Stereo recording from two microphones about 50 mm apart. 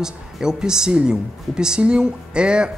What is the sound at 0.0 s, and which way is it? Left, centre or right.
Speech, centre.